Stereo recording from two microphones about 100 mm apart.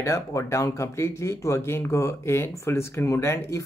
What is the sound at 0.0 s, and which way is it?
Speech, 30° left (ahead or behind).